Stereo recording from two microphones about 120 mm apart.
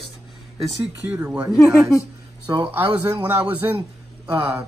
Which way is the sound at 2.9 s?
15° right (ahead or behind).